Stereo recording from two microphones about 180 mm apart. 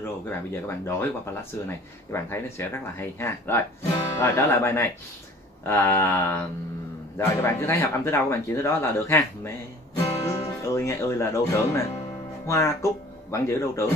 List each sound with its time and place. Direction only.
0.0 s speech: 15° left (ahead or behind)